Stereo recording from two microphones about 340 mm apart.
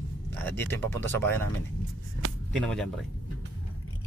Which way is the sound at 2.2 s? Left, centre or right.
Right.